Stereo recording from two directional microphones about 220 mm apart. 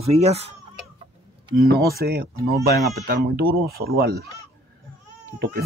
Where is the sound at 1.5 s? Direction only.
45° right (ahead or behind).